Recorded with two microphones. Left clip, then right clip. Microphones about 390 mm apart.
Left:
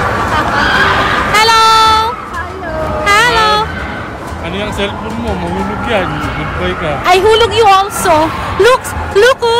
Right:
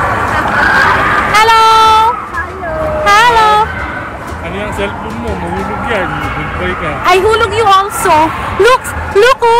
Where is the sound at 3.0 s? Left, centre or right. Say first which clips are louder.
Right 2 dB; centre.